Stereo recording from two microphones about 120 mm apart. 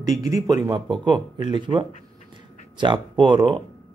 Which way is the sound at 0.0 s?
30° right (ahead or behind).